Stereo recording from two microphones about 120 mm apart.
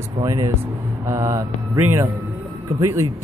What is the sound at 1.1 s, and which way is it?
Speech, 25° right (ahead or behind).